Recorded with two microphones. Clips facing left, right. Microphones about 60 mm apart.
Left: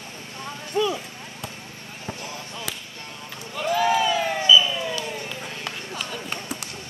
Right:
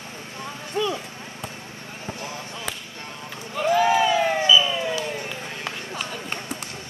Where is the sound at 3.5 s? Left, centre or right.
Centre.